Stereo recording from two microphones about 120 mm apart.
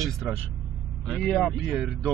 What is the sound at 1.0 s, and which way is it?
Speech, 5° left (ahead or behind).